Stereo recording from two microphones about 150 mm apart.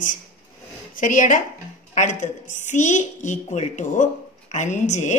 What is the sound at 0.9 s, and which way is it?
A woman's voice, 60° left (ahead or behind).